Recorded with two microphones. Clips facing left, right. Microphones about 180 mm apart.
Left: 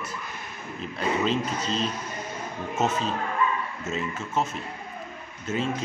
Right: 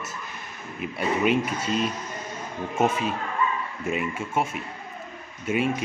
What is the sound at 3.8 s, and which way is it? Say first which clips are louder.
A man's voice: right 6 dB; 10° right (ahead or behind).